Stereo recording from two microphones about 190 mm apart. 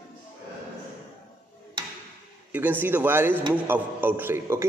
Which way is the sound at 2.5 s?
10° right (ahead or behind).